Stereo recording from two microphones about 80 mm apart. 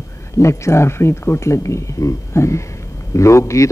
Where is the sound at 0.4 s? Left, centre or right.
Left.